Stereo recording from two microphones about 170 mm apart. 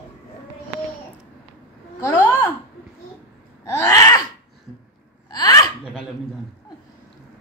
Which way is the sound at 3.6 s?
15° left (ahead or behind).